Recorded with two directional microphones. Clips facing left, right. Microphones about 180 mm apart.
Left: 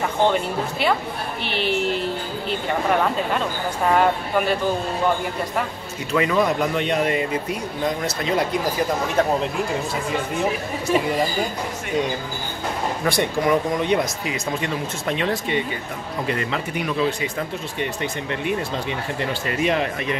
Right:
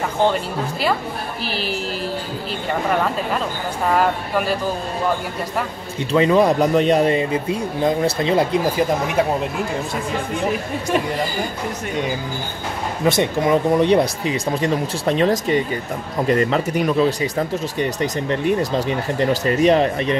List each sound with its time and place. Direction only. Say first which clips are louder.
0.3 s speech: even; centre (ahead or behind)
3.9 s speech: even; centre (ahead or behind)
6.1 s speech: right 5 dB; 30° right (ahead or behind)
13.0 s speech: right 5 dB; 20° right (ahead or behind)
13.7 s speech: right 6 dB; 35° right (ahead or behind)